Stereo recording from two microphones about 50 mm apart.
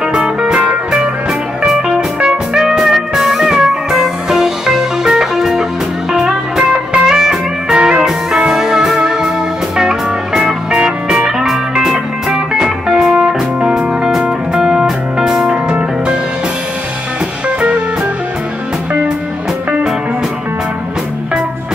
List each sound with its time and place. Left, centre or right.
0.0 s music: centre
0.6 s music: right; by 15.5 s centre
17.5 s music: right